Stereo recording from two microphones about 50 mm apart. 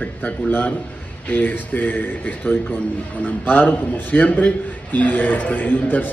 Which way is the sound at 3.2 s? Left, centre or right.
Left.